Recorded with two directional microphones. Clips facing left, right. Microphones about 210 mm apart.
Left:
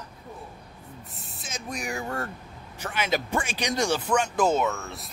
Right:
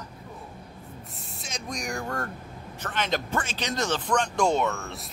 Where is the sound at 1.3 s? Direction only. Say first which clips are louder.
Even; 5° left (ahead or behind).